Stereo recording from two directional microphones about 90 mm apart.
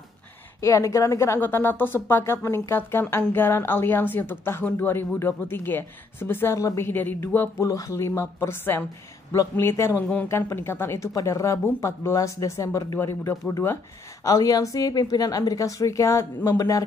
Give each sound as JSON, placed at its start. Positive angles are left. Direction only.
{"t": 0.6, "sound": "speech", "side_deg": 35}
{"t": 1.4, "sound": "speech", "side_deg": 25}
{"t": 6.6, "sound": "speech", "side_deg": 35}
{"t": 6.9, "sound": "speech", "side_deg": 25}
{"t": 14.2, "sound": "speech", "side_deg": 40}